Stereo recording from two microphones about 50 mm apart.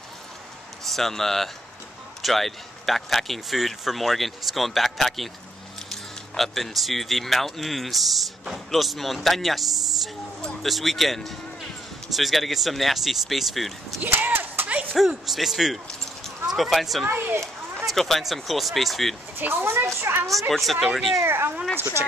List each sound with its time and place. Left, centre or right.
0.8 s speech: centre
14.1 s a sound: right
15.0 s speech: centre
17.1 s a child's voice: right
17.9 s speech: centre
19.3 s speech: right
20.3 s speech: centre
21.3 s speech: right